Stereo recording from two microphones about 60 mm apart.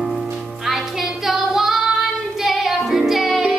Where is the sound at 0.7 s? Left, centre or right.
Centre.